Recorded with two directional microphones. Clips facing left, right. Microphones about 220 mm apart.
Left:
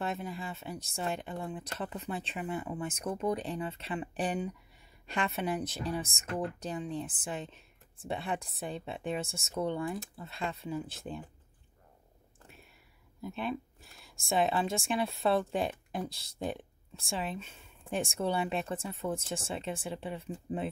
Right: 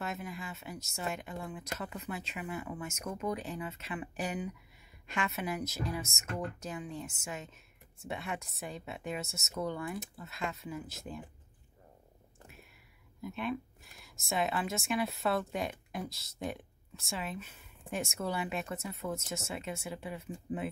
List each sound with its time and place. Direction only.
0.0 s a woman's voice: 30° left (ahead or behind)
14.1 s a woman's voice: 30° left (ahead or behind)